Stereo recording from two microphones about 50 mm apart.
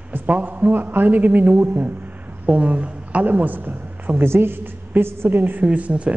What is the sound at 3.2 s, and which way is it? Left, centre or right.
Speech, right.